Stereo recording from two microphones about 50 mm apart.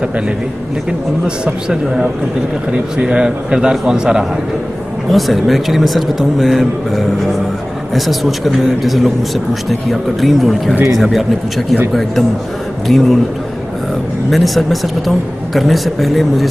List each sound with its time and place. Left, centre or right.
1.2 s a man's voice: centre
5.1 s speech: centre
14.3 s speech: centre